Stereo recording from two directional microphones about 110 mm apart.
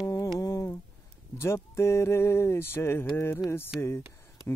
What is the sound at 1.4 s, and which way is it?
Speech, 25° left (ahead or behind).